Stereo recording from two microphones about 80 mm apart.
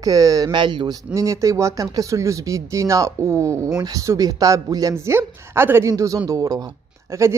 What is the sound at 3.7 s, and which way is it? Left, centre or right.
Speech, right.